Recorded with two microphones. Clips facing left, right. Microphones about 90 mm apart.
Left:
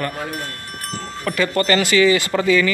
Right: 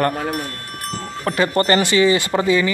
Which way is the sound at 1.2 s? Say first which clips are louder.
Right 2 dB; 30° right (ahead or behind).